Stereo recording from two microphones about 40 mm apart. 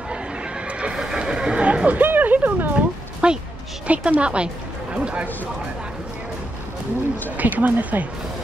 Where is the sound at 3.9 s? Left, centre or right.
Right.